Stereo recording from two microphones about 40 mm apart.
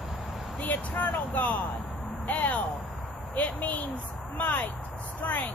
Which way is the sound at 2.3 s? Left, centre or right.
Left.